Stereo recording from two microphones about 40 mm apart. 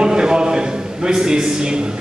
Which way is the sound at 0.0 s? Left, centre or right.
Centre.